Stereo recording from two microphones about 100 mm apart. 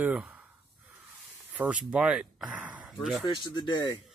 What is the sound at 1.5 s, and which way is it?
Speech, 15° right (ahead or behind).